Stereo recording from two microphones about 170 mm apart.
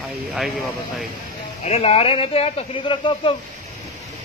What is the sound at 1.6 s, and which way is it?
Speech, 35° left (ahead or behind).